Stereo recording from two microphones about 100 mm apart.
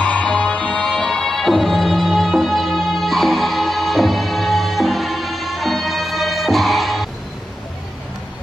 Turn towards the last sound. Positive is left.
turn(degrees=0)  # may be behind; listen again after turning